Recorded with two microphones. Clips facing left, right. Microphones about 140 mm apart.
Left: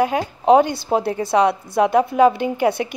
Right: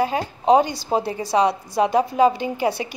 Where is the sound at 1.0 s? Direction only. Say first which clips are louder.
Left 3 dB; 10° right (ahead or behind).